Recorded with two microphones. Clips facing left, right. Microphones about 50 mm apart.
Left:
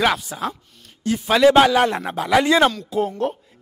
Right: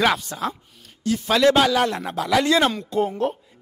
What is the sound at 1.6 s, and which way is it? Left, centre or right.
A man's voice, left.